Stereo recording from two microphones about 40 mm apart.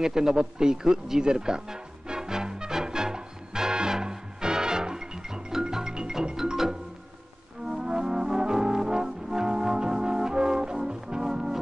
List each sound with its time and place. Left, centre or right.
0.0 s music: centre
7.6 s brass instrument: centre